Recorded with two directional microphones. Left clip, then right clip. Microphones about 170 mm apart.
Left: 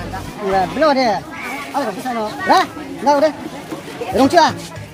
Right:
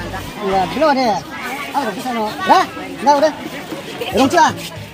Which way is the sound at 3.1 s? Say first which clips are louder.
Right 1 dB; 5° left (ahead or behind).